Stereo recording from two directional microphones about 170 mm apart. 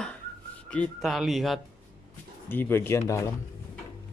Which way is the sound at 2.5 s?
10° left (ahead or behind).